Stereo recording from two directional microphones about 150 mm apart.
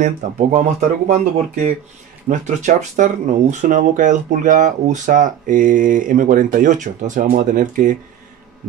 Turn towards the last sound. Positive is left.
turn(degrees=-60)  # may be behind; listen again after turning